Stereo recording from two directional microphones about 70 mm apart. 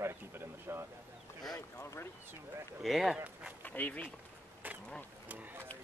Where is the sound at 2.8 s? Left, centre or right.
Centre.